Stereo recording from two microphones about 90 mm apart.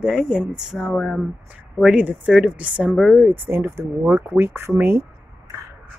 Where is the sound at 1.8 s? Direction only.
10° right (ahead or behind).